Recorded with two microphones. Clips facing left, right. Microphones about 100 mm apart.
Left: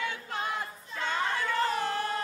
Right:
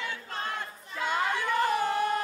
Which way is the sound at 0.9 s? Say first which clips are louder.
Right 2 dB; 15° right (ahead or behind).